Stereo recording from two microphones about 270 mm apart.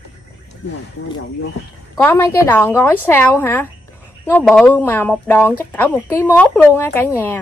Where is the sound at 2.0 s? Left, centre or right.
Centre.